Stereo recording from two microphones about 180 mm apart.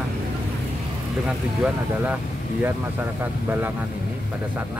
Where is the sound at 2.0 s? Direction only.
10° right (ahead or behind).